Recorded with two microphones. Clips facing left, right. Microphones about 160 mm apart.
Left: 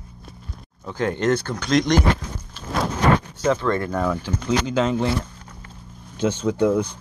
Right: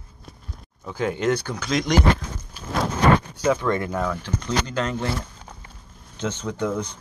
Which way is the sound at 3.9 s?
5° left (ahead or behind).